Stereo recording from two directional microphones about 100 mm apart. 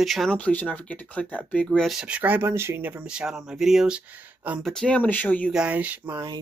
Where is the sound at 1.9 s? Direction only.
10° right (ahead or behind).